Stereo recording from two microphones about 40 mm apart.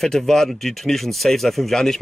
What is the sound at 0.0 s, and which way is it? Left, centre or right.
Speech, centre.